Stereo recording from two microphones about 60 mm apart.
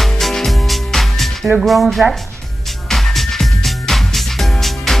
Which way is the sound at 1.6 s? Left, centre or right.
Centre.